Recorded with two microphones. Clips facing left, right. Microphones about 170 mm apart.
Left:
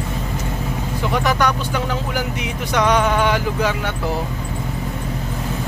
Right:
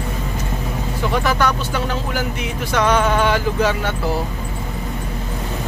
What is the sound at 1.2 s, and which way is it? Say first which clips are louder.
Speech: even; 15° left (ahead or behind).